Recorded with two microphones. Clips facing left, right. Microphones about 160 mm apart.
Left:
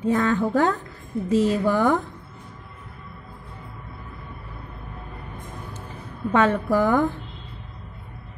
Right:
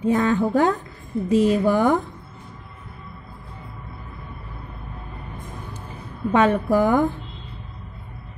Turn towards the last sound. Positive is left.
turn(degrees=-15)  # may be behind; listen again after turning